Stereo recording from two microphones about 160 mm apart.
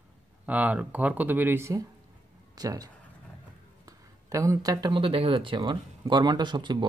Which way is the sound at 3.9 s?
20° right (ahead or behind).